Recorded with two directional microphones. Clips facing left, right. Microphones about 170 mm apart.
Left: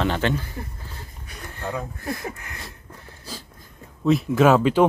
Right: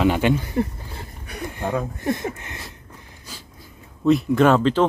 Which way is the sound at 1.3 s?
65° right (ahead or behind).